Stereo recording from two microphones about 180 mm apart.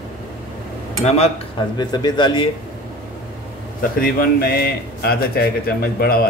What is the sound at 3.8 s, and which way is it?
A man's voice, 55° left (ahead or behind).